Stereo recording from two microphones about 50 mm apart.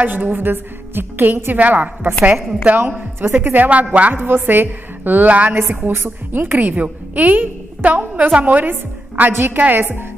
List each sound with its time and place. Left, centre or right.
0.0 s a woman's voice: right
3.2 s a woman's voice: right
4.1 s a woman's voice: right
5.5 s a woman's voice: right